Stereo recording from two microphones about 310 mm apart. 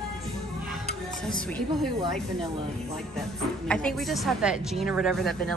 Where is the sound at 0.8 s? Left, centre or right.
Centre.